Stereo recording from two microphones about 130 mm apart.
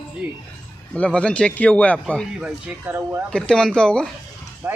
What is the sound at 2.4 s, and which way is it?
Speech, 15° right (ahead or behind).